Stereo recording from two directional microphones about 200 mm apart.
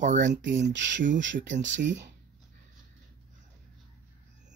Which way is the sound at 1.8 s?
60° right (ahead or behind).